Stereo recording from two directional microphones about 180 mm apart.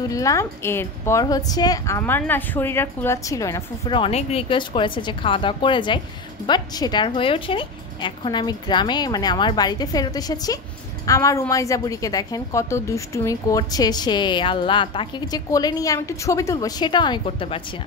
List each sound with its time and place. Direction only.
0.1 s a woman's voice: 20° left (ahead or behind)
4.0 s a woman's voice: 35° left (ahead or behind)